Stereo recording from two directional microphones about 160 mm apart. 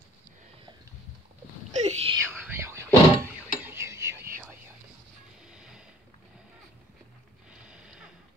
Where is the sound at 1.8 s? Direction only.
40° right (ahead or behind).